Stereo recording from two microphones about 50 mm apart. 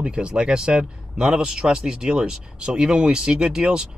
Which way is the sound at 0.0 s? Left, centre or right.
Centre.